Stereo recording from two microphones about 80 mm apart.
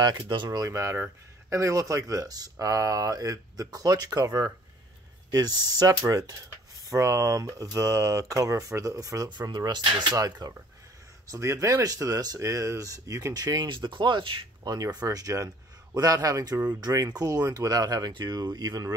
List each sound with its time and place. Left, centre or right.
0.0 s speech: right
0.6 s speech: right
5.3 s speech: right
9.3 s speech: right
10.1 s speech: right
11.2 s speech: right
12.4 s speech: right
13.7 s speech: right
14.6 s speech: right
15.0 s speech: right
18.1 s speech: right